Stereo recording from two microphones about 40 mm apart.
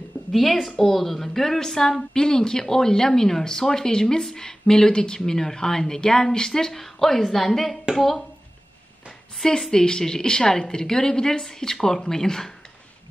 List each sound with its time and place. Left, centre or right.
0.3 s a woman's voice: centre
9.4 s a woman's voice: centre